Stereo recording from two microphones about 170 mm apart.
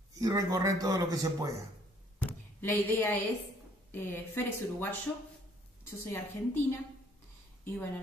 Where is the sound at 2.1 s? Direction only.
10° left (ahead or behind).